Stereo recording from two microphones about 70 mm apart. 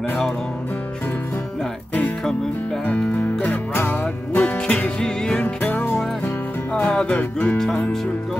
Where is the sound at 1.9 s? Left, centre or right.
Left.